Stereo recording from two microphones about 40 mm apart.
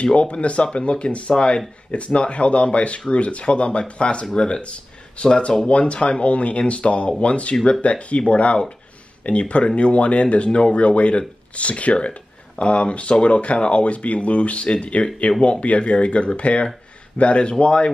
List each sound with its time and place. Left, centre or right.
0.0 s speech: left